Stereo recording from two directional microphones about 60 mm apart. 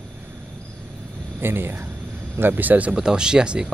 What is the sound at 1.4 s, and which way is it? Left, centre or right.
Speech, right.